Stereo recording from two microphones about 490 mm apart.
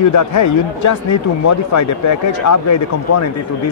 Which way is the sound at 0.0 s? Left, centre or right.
Left.